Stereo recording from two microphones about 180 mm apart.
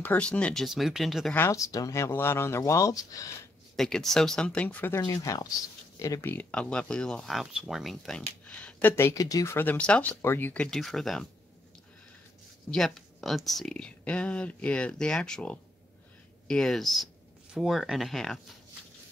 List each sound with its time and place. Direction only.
0.0 s speech: 5° left (ahead or behind)
1.3 s speech: 15° left (ahead or behind)
3.7 s speech: centre (ahead or behind)
12.7 s speech: centre (ahead or behind)